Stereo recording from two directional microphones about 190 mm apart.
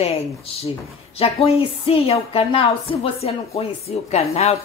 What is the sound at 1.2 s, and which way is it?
A woman's voice, 30° left (ahead or behind).